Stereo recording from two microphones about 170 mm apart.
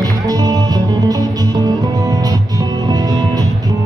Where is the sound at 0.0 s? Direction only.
25° right (ahead or behind).